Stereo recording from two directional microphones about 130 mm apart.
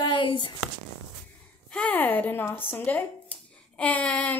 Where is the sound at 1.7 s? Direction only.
10° left (ahead or behind).